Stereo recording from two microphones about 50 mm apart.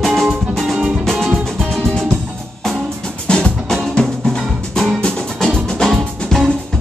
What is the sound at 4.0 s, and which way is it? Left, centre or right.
Drum, centre.